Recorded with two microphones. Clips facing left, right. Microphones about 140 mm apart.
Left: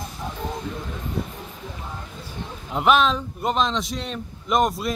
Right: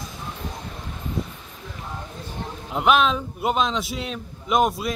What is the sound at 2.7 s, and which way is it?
A man's voice, centre (ahead or behind).